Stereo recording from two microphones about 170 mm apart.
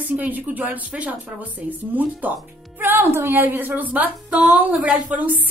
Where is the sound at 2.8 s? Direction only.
10° right (ahead or behind).